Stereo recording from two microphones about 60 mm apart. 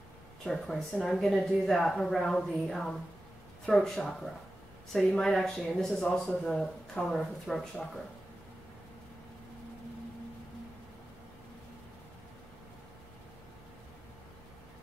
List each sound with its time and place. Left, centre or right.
0.5 s a woman's voice: centre